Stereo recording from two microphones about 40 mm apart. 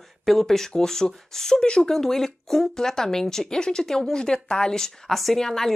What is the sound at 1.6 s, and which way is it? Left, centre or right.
Speech, left.